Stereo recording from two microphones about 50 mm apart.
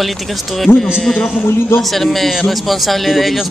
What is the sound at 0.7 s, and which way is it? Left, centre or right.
Speech, left.